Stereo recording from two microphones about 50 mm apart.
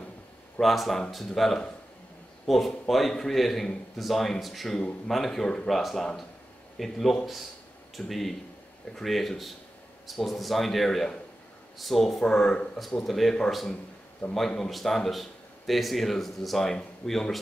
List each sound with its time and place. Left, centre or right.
0.6 s speech: centre
4.7 s speech: centre
14.2 s a man's voice: left
14.6 s speech: centre